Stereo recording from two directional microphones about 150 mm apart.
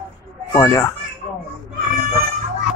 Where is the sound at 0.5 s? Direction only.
25° left (ahead or behind).